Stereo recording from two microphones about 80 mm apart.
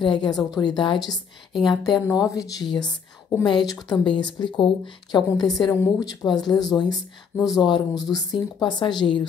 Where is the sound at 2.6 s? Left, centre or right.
Left.